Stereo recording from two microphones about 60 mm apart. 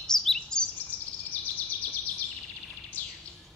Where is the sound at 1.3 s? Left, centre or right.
Left.